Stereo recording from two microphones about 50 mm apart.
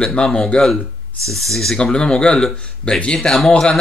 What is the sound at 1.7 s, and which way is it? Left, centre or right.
Speech, centre.